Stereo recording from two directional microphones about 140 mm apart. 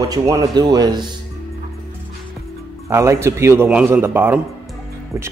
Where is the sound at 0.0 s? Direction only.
25° right (ahead or behind).